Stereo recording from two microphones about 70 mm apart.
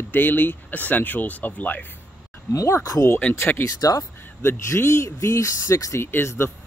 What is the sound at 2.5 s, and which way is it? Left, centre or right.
Speech, left.